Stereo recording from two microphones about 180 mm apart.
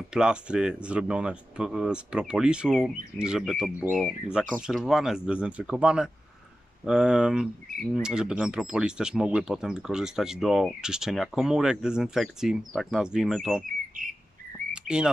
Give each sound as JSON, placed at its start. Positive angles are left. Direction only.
{"t": 0.1, "sound": "speech", "side_deg": -5}
{"t": 14.0, "sound": "bird", "side_deg": -50}
{"t": 14.7, "sound": "a sound", "side_deg": -5}